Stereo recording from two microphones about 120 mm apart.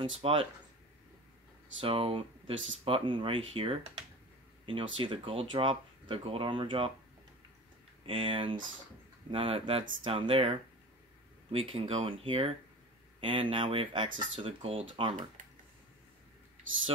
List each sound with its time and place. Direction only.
0.0 s speech: 50° right (ahead or behind)
1.8 s speech: 50° right (ahead or behind)
8.1 s speech: 45° right (ahead or behind)
11.5 s speech: 50° right (ahead or behind)